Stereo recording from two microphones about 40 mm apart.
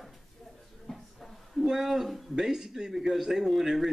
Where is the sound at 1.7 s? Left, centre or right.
Centre.